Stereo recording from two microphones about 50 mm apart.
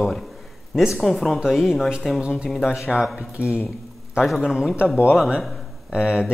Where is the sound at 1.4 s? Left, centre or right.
Centre.